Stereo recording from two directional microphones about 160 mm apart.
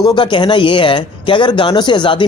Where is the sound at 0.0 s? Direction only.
30° left (ahead or behind).